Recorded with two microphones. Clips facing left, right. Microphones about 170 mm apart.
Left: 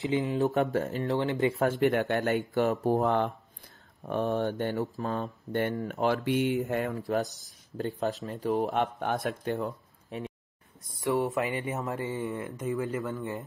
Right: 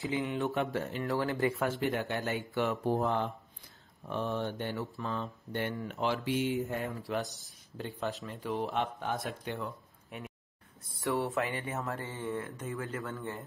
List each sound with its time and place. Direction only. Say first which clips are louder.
0.2 s speech: left 5 dB; 40° left (ahead or behind)
1.0 s speech: left 2 dB; 20° left (ahead or behind)
1.7 s speech: left 7 dB; 60° left (ahead or behind); by 3.0 s 40° left (ahead or behind)
3.0 s speech: left 5 dB; 60° left (ahead or behind)
4.1 s speech: left 6 dB; 45° left (ahead or behind); by 6.6 s 65° left (ahead or behind)
7.0 s speech: left 6 dB; 45° left (ahead or behind)
10.1 s speech: left 7 dB; 35° left (ahead or behind)
10.8 s speech: left 4 dB; 15° left (ahead or behind)